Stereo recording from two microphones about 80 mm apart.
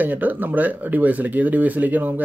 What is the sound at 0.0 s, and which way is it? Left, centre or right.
Speech, right.